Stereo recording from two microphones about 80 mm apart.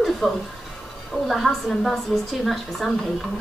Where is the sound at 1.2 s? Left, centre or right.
Centre.